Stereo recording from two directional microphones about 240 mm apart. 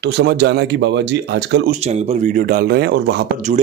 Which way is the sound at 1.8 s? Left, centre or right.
Right.